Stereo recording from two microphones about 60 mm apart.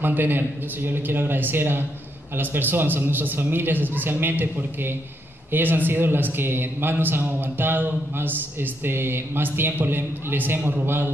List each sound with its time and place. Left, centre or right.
0.0 s a man's voice: right